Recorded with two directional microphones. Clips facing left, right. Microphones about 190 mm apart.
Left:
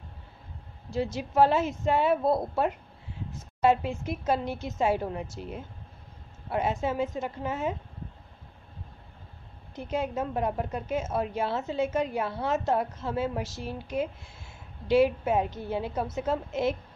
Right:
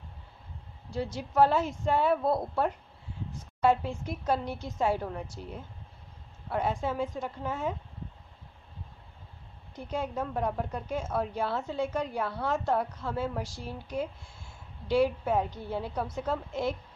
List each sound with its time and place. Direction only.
0.8 s a woman's voice: 25° left (ahead or behind)
9.8 s a woman's voice: 20° left (ahead or behind)